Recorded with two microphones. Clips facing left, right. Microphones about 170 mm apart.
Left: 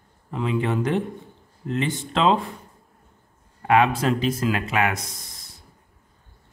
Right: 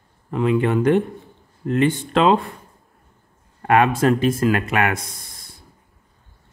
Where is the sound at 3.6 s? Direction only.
50° right (ahead or behind).